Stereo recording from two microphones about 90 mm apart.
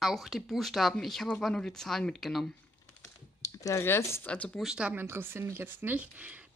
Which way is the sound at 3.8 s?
30° left (ahead or behind).